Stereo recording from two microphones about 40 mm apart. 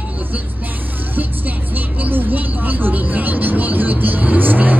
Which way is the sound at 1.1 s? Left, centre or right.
Right.